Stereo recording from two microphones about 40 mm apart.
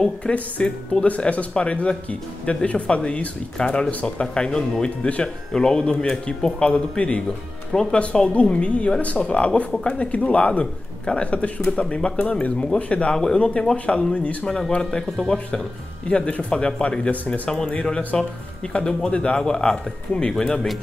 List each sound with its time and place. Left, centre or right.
0.2 s speech: left
3.5 s speech: centre
5.0 s speech: left
5.5 s speech: centre
6.7 s speech: left
11.2 s speech: left
13.1 s speech: centre
13.4 s speech: left
14.7 s speech: centre